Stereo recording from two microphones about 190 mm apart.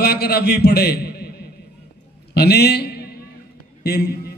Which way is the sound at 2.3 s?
60° left (ahead or behind).